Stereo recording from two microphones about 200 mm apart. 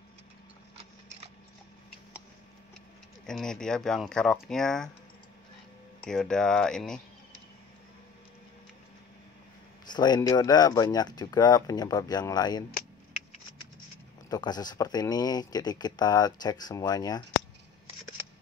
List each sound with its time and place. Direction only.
3.3 s speech: 5° left (ahead or behind)
6.0 s speech: 5° left (ahead or behind)
9.8 s speech: 20° left (ahead or behind)
14.3 s speech: 20° left (ahead or behind)